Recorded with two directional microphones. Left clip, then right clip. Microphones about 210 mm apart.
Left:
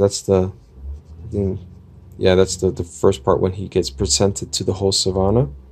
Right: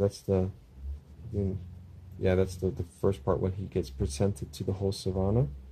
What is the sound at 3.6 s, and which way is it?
Speech, 65° left (ahead or behind).